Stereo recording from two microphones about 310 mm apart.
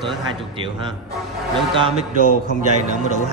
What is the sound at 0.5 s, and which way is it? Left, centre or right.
A man's voice, centre.